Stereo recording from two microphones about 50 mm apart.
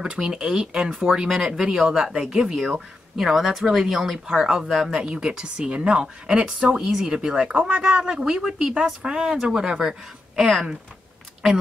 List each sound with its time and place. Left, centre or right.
0.0 s speech: centre
6.8 s speech: centre